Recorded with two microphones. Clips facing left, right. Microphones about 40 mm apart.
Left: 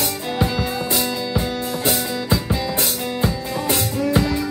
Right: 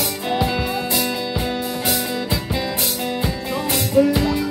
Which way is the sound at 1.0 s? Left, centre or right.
Centre.